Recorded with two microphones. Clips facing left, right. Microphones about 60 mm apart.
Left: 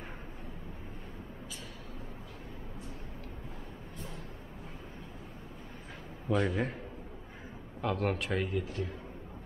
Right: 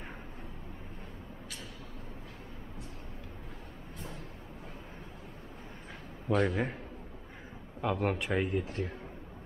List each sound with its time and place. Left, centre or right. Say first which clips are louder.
6.2 s speech: right 1 dB; centre
7.8 s speech: right 1 dB; centre
8.4 s speech: right 2 dB; right